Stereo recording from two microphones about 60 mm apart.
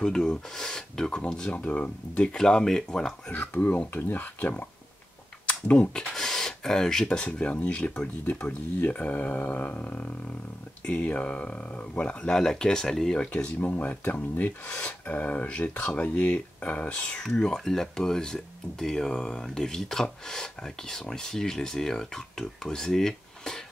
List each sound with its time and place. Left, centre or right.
0.0 s speech: centre
2.3 s speech: centre
3.3 s speech: left
6.1 s speech: centre
13.6 s speech: left
17.2 s speech: centre